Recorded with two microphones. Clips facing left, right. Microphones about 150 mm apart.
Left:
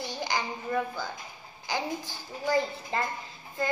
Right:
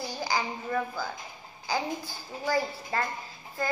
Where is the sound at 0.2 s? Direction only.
5° right (ahead or behind).